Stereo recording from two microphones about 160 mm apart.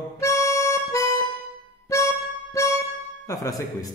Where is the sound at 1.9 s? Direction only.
20° left (ahead or behind).